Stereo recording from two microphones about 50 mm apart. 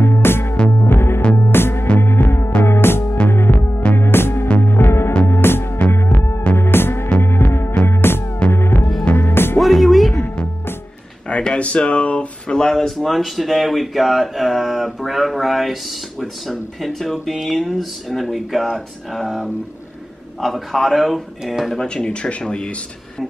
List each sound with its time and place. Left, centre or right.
0.0 s music: left
9.6 s music: centre
11.2 s speech: left; by 21.7 s centre
21.7 s a man's voice: centre